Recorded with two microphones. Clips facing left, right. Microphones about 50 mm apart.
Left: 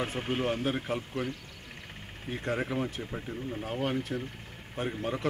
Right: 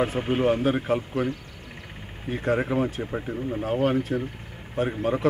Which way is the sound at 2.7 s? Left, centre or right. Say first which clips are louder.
Right 7 dB; right.